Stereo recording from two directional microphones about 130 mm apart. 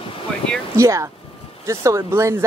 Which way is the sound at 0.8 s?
25° right (ahead or behind).